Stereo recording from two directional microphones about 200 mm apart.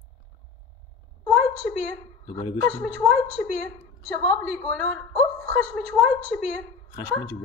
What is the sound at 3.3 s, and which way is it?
Speech, 5° left (ahead or behind).